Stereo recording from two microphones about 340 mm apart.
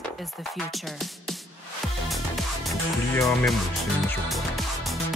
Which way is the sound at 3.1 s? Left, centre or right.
Centre.